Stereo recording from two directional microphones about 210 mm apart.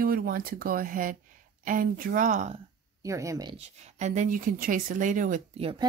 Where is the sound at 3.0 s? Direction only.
15° right (ahead or behind); by 5.4 s 40° right (ahead or behind).